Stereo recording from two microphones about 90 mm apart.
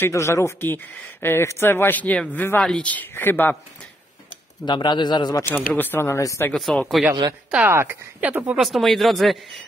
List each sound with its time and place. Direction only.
0.1 s speech: 30° left (ahead or behind)
4.6 s a man's voice: 55° left (ahead or behind)
5.4 s speech: 20° left (ahead or behind)
6.0 s speech: 35° left (ahead or behind)
6.5 s speech: 10° left (ahead or behind)
7.6 s a woman's voice: 25° right (ahead or behind)
8.5 s speech: centre (ahead or behind)